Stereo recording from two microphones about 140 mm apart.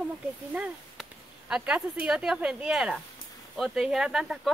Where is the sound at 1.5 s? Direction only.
5° right (ahead or behind).